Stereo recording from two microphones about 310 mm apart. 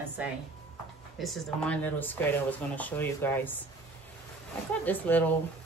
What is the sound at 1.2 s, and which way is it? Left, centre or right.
Speech, centre.